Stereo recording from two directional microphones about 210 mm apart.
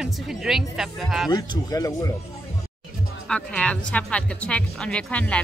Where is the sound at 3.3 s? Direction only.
5° left (ahead or behind).